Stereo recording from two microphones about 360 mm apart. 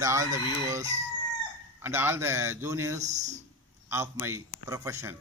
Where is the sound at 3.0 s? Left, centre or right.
Centre.